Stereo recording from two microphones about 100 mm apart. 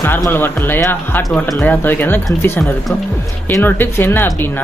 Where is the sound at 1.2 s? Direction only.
Centre (ahead or behind).